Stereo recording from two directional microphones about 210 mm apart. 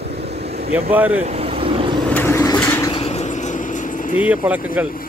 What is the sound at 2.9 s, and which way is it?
Vehicle, 30° left (ahead or behind).